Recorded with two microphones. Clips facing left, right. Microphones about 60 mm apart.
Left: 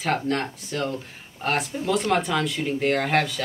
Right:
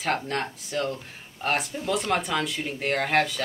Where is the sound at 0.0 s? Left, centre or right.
Centre.